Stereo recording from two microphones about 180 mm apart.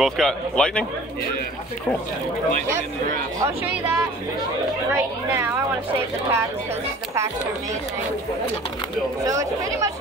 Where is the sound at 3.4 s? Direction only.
15° right (ahead or behind).